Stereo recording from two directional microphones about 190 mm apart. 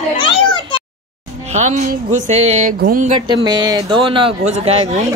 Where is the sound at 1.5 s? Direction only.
35° right (ahead or behind).